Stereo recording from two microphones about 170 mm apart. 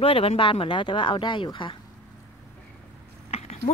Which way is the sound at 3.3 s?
40° left (ahead or behind).